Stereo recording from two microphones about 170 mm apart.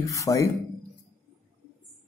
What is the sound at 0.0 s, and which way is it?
Speech, 20° left (ahead or behind).